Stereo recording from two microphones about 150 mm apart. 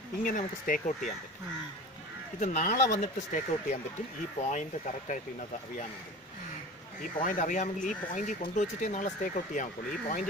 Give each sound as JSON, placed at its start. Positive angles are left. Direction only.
{"t": 0.2, "sound": "speech", "side_deg": 65}
{"t": 2.4, "sound": "speech", "side_deg": 55}
{"t": 7.2, "sound": "speech", "side_deg": 60}